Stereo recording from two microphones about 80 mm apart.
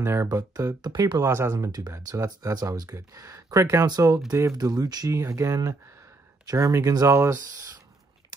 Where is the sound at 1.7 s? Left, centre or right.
Right.